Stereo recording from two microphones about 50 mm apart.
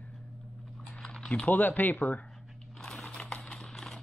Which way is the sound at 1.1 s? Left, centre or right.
Centre.